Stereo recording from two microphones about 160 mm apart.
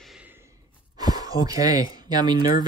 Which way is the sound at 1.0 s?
25° right (ahead or behind).